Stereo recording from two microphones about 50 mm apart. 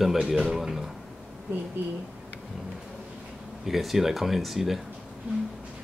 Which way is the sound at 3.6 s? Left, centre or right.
Centre.